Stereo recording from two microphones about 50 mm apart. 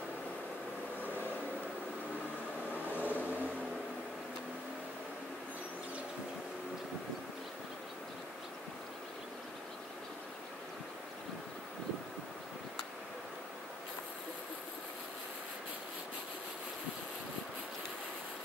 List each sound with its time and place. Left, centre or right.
3.0 s vehicle: right